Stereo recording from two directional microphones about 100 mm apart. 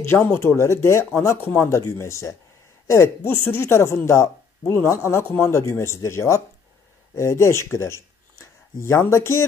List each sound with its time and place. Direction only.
0.0 s a woman's voice: 25° left (ahead or behind)